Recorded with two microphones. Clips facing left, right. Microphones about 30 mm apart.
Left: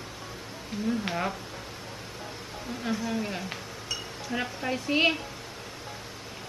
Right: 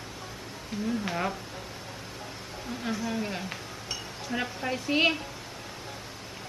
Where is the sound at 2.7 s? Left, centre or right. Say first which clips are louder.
Left 1 dB; centre.